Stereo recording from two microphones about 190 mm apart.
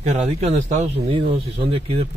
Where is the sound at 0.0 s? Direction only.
35° right (ahead or behind).